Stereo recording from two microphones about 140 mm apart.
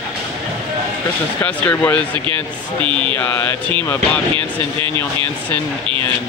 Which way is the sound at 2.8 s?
35° right (ahead or behind).